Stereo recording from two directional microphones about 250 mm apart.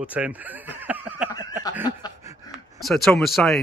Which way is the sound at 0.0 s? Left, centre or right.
Centre.